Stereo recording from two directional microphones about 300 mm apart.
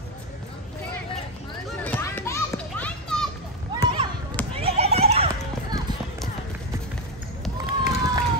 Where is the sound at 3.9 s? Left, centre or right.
Centre.